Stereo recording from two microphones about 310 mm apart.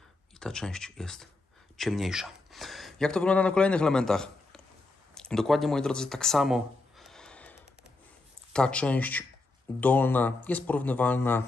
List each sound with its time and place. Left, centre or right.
0.4 s speech: centre
5.1 s a sound: centre
8.5 s speech: centre